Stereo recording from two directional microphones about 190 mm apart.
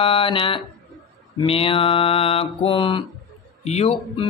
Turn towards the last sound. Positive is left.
turn(degrees=35)  # may be behind; listen again after turning